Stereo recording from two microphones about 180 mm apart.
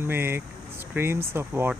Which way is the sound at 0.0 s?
10° right (ahead or behind).